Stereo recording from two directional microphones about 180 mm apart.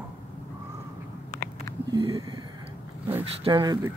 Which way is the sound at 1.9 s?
25° right (ahead or behind).